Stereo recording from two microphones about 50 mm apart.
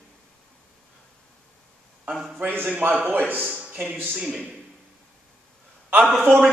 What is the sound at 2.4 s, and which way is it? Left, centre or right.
A man's voice, right.